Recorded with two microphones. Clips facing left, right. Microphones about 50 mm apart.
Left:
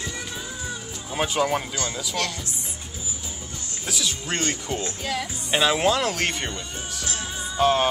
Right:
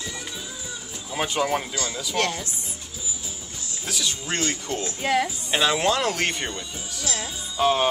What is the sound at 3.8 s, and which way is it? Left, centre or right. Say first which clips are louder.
Speech: even; centre.